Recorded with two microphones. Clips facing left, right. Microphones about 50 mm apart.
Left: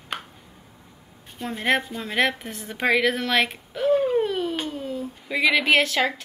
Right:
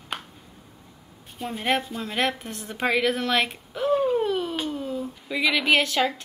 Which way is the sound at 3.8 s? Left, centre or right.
Centre.